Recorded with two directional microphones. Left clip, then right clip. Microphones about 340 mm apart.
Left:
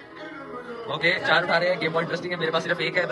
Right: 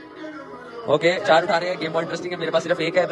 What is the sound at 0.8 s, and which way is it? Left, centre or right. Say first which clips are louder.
A man's voice: right 5 dB; centre.